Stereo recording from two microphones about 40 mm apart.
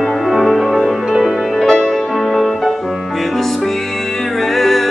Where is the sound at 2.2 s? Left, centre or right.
Centre.